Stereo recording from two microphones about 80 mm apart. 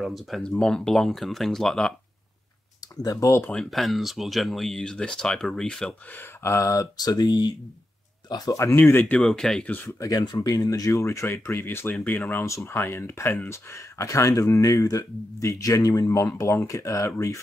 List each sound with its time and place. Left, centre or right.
0.0 s speech: centre
2.8 s speech: left
3.4 s speech: centre
6.0 s speech: left
8.6 s speech: left
9.2 s speech: centre
9.8 s speech: left
12.4 s speech: left